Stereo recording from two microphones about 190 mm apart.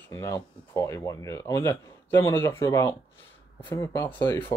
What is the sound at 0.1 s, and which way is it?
Speech, 15° left (ahead or behind).